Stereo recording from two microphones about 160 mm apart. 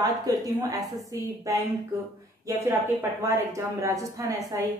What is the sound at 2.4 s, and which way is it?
A woman's voice, 20° right (ahead or behind).